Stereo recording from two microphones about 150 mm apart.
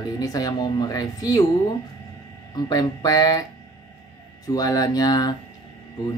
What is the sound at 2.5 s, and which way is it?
Speech, 25° left (ahead or behind).